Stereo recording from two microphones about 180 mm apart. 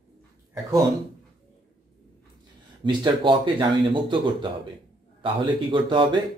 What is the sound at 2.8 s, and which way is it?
Speech, 25° right (ahead or behind).